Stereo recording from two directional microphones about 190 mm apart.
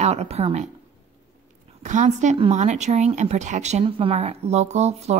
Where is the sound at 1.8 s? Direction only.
40° right (ahead or behind).